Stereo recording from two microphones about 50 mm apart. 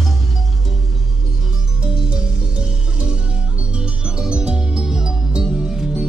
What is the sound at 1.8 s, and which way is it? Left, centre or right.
Music, centre.